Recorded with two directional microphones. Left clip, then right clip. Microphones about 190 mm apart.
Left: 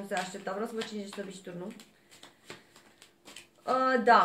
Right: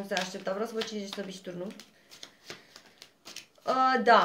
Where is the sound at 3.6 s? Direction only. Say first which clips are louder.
Right 1 dB; 45° right (ahead or behind).